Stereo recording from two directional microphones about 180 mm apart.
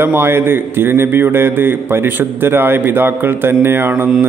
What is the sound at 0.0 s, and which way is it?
A man's voice, 10° right (ahead or behind).